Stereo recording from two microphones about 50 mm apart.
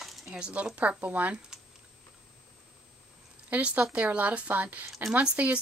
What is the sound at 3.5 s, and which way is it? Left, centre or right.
Speech, right.